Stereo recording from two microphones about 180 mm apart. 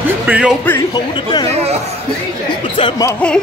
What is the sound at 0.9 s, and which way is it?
Speech, 25° left (ahead or behind).